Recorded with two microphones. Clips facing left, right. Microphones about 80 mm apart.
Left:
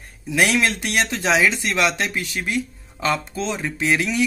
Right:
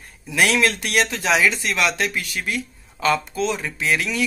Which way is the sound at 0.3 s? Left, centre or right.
Left.